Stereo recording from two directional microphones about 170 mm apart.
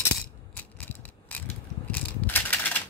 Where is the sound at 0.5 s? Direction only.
10° left (ahead or behind).